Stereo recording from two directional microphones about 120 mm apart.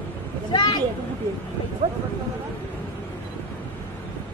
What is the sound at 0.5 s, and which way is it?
Speech, 35° left (ahead or behind).